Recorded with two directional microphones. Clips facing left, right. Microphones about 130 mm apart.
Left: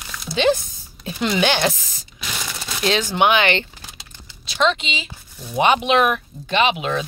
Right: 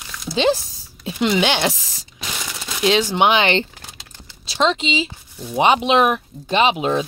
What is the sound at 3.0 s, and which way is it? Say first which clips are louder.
Speech: right 1 dB; 25° right (ahead or behind).